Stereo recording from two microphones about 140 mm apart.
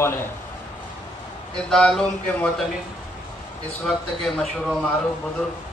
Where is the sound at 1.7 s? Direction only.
5° left (ahead or behind).